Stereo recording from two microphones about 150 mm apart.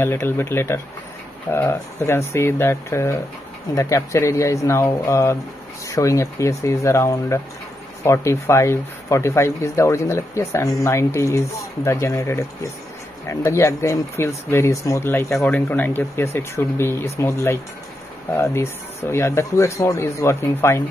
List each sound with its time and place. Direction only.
0.0 s speech: 15° left (ahead or behind)